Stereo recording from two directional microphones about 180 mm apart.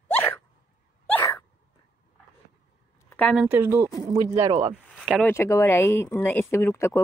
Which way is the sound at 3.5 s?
15° right (ahead or behind).